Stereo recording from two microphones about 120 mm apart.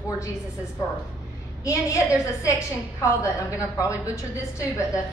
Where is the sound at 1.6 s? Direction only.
25° left (ahead or behind).